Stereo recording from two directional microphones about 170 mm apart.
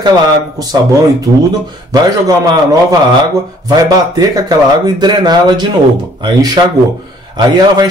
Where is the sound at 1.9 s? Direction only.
20° right (ahead or behind).